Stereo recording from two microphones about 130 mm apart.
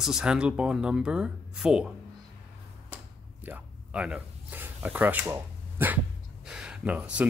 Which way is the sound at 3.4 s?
10° right (ahead or behind).